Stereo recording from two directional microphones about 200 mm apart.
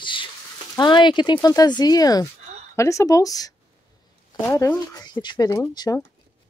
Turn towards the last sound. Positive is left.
turn(degrees=20)  # may be behind; listen again after turning